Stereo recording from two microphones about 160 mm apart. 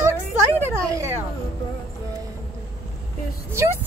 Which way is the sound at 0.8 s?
20° right (ahead or behind).